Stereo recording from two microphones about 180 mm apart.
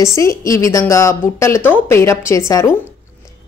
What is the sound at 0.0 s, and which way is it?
A woman's voice, 15° left (ahead or behind).